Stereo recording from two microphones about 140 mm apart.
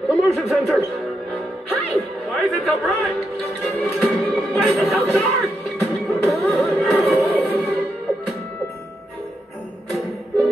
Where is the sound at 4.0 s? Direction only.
Centre (ahead or behind).